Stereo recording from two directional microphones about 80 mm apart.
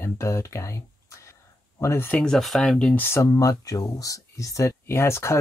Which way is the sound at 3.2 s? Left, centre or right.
Left.